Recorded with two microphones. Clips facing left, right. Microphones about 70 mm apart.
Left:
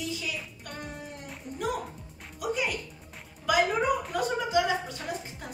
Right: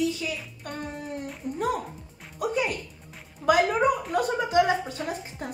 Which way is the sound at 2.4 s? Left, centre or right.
Right.